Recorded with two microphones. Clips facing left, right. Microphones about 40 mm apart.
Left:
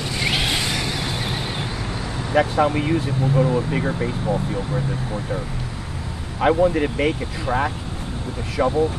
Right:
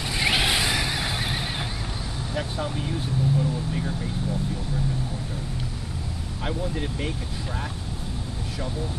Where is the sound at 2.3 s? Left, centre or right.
Left.